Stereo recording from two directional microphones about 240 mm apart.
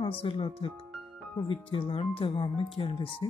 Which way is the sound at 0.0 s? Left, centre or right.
Centre.